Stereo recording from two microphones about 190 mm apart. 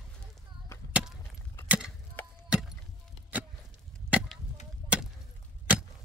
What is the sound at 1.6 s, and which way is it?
Chop, 5° right (ahead or behind).